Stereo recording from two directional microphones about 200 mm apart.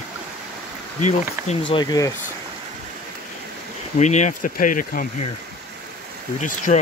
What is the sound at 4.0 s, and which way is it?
Speech, 35° left (ahead or behind).